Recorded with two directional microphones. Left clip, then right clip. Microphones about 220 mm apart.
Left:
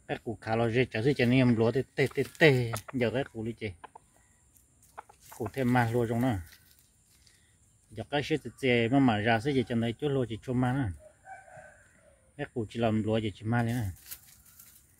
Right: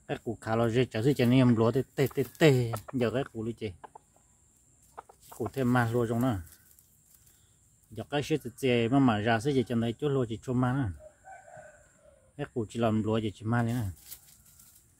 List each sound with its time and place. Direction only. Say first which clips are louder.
0.0 s speech: even; 5° right (ahead or behind)
5.0 s chicken: even; 35° right (ahead or behind)
5.5 s speech: left 1 dB; 5° right (ahead or behind)
7.9 s speech: even; 5° right (ahead or behind)
12.4 s speech: right 1 dB; 5° right (ahead or behind)